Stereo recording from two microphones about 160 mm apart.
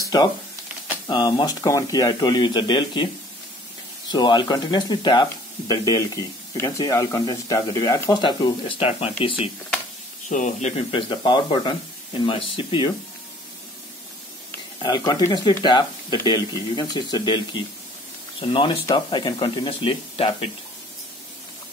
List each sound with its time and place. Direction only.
0.0 s cash register: 25° left (ahead or behind)
1.0 s speech: 30° left (ahead or behind)
4.1 s speech: 25° left (ahead or behind)
10.3 s speech: 45° left (ahead or behind); by 12.9 s 30° left (ahead or behind)
14.8 s speech: 25° left (ahead or behind)